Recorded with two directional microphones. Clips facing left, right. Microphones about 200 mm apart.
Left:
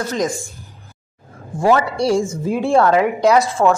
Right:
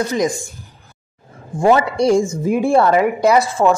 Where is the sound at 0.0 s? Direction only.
15° right (ahead or behind).